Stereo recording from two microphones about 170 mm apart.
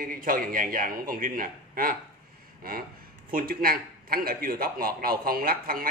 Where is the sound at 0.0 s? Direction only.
55° right (ahead or behind).